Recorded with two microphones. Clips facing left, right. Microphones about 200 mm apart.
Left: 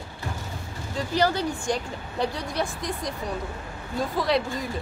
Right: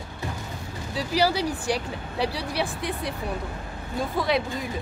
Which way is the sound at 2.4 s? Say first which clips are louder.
Right 1 dB; 35° right (ahead or behind).